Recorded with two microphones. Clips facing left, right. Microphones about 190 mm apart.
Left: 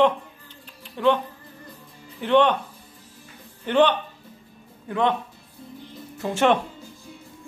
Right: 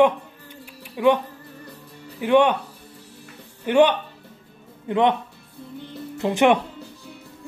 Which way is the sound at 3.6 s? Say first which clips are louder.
Right 2 dB; 10° right (ahead or behind).